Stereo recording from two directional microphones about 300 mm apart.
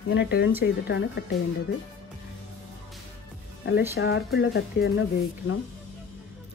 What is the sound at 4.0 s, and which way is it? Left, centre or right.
Speech, left.